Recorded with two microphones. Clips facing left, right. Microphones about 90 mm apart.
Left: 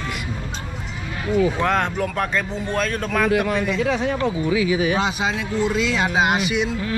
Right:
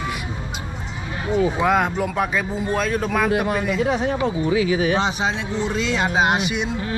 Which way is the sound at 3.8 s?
25° right (ahead or behind).